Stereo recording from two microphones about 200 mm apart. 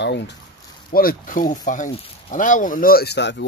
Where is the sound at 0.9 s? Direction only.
45° left (ahead or behind).